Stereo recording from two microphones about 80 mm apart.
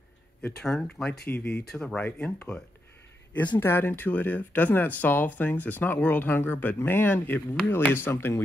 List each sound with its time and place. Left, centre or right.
0.6 s speech: centre
1.3 s speech: centre
1.7 s speech: centre
2.0 s speech: centre
3.5 s speech: left